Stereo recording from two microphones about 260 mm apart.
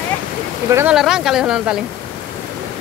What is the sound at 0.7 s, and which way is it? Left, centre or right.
Speech, centre.